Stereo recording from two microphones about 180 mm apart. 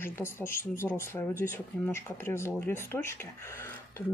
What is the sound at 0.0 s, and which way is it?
Speech, 15° left (ahead or behind).